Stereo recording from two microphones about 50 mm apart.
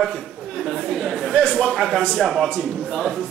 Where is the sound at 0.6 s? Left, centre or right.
Centre.